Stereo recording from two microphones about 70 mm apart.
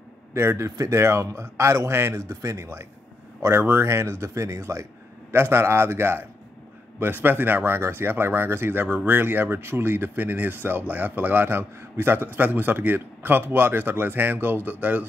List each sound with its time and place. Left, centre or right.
0.3 s a man's voice: right